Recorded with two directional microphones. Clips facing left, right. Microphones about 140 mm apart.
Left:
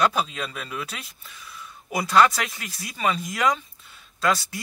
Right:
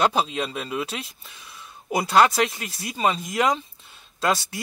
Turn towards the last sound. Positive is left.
turn(degrees=-25)  # may be behind; listen again after turning